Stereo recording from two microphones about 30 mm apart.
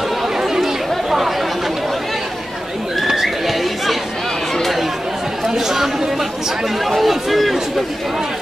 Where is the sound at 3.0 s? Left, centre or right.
Centre.